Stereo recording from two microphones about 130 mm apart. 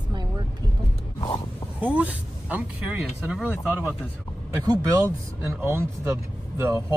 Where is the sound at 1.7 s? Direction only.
10° right (ahead or behind).